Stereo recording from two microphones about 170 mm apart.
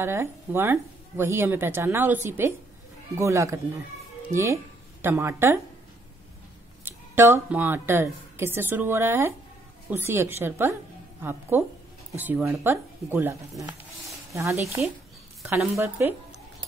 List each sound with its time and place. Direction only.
0.0 s speech: 15° right (ahead or behind)
6.8 s speech: 15° right (ahead or behind)